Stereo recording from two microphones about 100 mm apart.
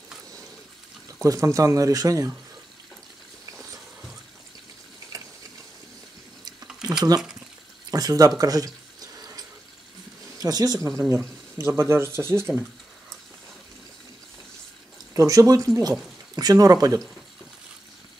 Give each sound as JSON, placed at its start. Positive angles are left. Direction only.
{"t": 1.2, "sound": "speech", "side_deg": -30}
{"t": 6.8, "sound": "a sound", "side_deg": -40}
{"t": 7.9, "sound": "speech", "side_deg": -35}
{"t": 8.4, "sound": "a sound", "side_deg": -35}
{"t": 10.4, "sound": "speech", "side_deg": -40}
{"t": 15.1, "sound": "speech", "side_deg": -35}